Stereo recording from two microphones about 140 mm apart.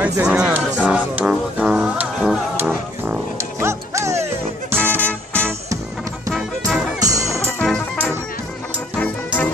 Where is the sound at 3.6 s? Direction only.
20° right (ahead or behind).